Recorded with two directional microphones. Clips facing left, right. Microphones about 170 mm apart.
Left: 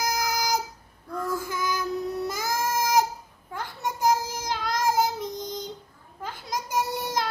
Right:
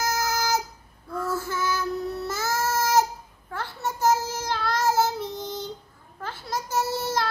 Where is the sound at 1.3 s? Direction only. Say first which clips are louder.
Right 2 dB; 15° left (ahead or behind).